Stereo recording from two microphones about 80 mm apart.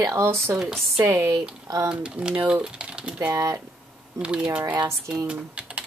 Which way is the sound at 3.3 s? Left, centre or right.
Right.